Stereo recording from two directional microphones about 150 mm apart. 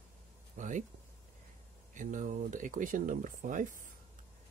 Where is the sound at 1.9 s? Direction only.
60° right (ahead or behind).